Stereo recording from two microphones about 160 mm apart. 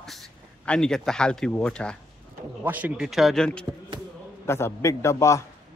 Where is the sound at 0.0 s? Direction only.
Centre (ahead or behind).